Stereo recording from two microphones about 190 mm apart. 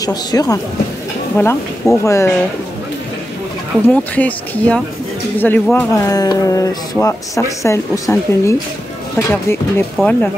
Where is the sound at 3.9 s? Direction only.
10° left (ahead or behind).